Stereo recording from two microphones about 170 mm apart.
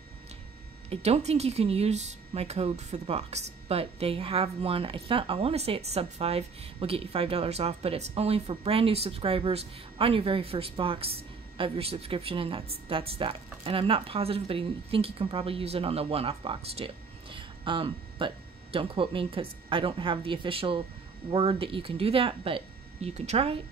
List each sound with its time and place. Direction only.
0.8 s speech: 40° right (ahead or behind)